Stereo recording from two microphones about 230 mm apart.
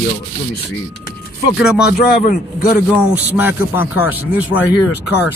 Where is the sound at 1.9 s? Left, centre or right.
Left.